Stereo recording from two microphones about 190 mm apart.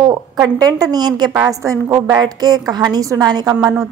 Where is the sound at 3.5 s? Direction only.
5° right (ahead or behind).